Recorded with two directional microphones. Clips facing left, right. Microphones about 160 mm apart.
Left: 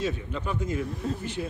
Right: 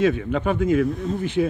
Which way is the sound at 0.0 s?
70° right (ahead or behind).